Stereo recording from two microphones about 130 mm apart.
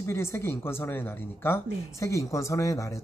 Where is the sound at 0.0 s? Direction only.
20° left (ahead or behind).